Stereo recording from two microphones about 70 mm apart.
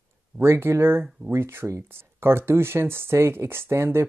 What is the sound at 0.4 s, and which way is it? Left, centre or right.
Speech, right.